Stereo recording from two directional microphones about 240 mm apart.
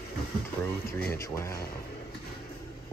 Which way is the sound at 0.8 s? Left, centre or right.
Centre.